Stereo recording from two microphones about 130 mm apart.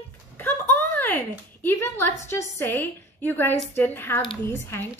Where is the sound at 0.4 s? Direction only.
15° left (ahead or behind).